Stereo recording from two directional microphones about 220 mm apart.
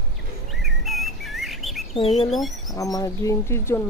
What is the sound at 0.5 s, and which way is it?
Bird, centre (ahead or behind).